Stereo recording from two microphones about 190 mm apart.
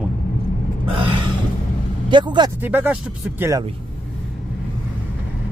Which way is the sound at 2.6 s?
10° right (ahead or behind).